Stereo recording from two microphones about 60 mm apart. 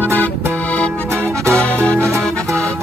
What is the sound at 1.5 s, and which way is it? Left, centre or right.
Music, centre.